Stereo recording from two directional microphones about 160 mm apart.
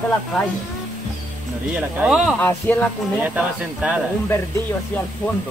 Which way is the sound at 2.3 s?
10° left (ahead or behind).